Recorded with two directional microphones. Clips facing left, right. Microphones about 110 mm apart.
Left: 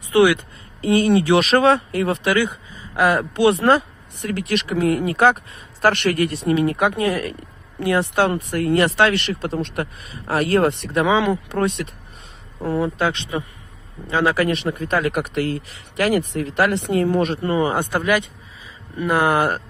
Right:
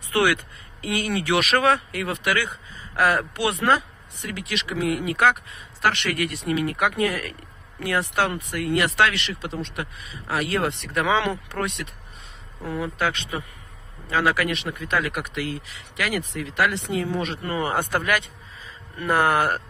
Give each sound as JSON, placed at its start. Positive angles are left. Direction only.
{"t": 0.1, "sound": "speech", "side_deg": 20}
{"t": 0.7, "sound": "speech", "side_deg": 30}
{"t": 3.3, "sound": "speech", "side_deg": 30}
{"t": 9.2, "sound": "speech", "side_deg": 45}
{"t": 11.1, "sound": "speech", "side_deg": 15}
{"t": 11.5, "sound": "speech", "side_deg": 30}
{"t": 17.4, "sound": "speech", "side_deg": 20}